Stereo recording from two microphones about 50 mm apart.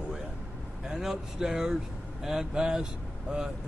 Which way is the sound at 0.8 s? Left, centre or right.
Centre.